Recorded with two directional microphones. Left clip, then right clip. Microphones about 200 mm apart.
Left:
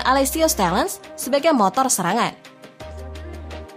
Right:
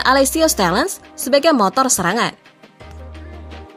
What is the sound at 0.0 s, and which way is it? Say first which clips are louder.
Speech: right 4 dB; 20° right (ahead or behind).